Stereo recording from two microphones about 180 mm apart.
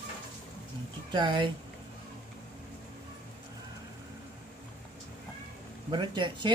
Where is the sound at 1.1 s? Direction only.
25° right (ahead or behind).